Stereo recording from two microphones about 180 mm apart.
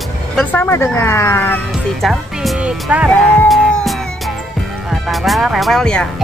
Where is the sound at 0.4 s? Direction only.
10° left (ahead or behind).